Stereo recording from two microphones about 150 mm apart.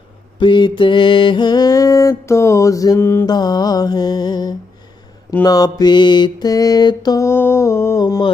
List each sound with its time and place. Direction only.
0.4 s mantra: 30° left (ahead or behind); by 3.3 s 15° left (ahead or behind)
3.3 s mantra: 25° left (ahead or behind)